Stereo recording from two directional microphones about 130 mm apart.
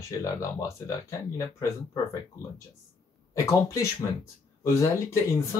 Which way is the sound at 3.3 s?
25° left (ahead or behind).